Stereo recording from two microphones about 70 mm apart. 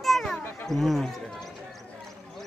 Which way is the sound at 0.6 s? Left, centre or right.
Centre.